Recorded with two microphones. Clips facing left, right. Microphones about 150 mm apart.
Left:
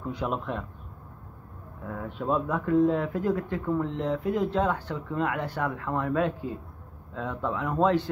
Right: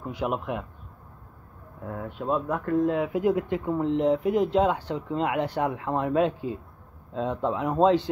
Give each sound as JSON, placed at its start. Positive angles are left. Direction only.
{"t": 0.0, "sound": "speech", "side_deg": -15}
{"t": 1.9, "sound": "speech", "side_deg": -5}